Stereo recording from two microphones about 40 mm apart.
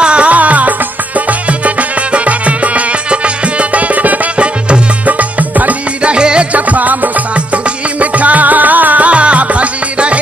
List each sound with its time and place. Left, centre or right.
0.0 s music: right
1.8 s music: right
4.4 s music: right
6.5 s music: right